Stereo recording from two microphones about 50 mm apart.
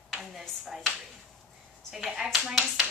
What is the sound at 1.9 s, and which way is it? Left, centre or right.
Speech, centre.